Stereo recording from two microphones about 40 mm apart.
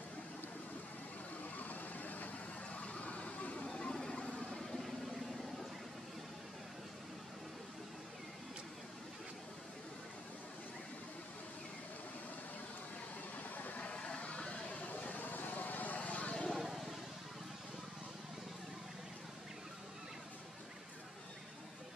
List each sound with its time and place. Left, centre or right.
1.6 s vehicle: left
3.7 s a sound: left
4.5 s vehicle: centre
13.4 s a sound: left
13.8 s vehicle: left
16.5 s vehicle: centre